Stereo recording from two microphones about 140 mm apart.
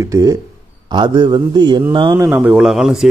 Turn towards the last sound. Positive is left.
turn(degrees=-5)  # may be behind; listen again after turning